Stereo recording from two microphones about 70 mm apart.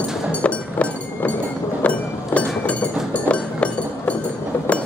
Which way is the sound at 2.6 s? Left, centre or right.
Centre.